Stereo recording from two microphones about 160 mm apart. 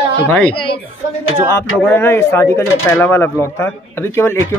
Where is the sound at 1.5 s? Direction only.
15° left (ahead or behind).